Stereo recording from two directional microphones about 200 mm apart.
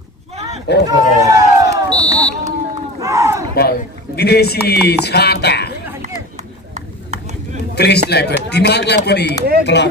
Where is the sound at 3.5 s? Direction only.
50° left (ahead or behind).